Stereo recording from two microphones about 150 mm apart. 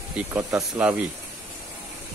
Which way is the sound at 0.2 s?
15° right (ahead or behind).